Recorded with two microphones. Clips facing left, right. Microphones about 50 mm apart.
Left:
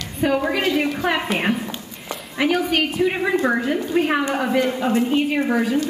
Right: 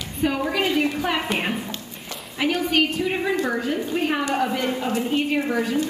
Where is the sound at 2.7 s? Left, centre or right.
Centre.